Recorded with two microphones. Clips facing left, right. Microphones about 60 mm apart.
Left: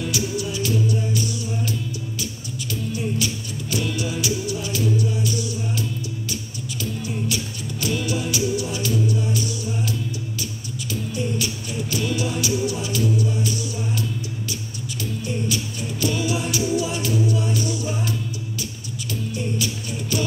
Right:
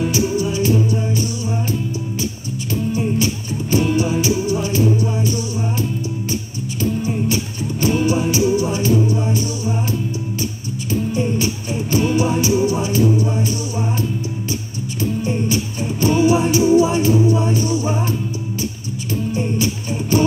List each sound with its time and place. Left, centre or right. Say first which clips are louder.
0.0 s music: right 7 dB; right
15.0 s music: right 7 dB; right
19.3 s music: right 5 dB; right